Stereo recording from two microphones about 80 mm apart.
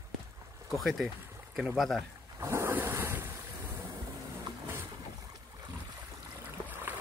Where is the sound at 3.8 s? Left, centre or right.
Right.